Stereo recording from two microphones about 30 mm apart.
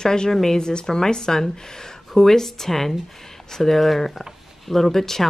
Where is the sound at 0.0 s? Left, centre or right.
Left.